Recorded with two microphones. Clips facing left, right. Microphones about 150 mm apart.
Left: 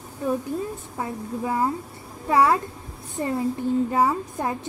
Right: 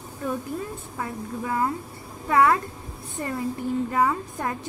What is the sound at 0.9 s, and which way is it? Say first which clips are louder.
A woman's voice: left 1 dB; 25° left (ahead or behind).